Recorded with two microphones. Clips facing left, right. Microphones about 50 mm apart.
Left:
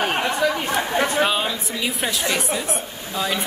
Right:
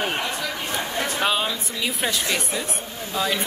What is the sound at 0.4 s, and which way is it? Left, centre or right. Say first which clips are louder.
Chatter: left 9 dB; left.